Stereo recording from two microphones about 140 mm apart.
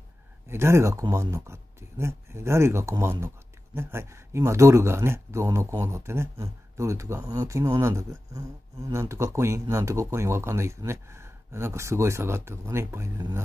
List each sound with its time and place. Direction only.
0.5 s speech: 20° right (ahead or behind)